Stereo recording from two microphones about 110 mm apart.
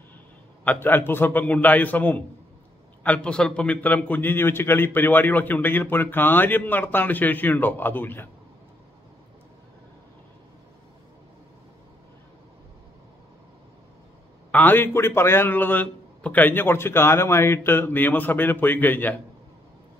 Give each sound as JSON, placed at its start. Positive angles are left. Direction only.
{"t": 0.7, "sound": "a man's voice", "side_deg": 20}
{"t": 14.5, "sound": "a man's voice", "side_deg": 15}